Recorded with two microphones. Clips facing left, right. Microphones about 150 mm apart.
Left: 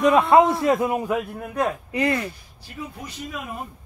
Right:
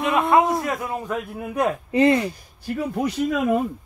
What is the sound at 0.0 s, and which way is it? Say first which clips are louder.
A man's voice: left 3 dB; 30° left (ahead or behind).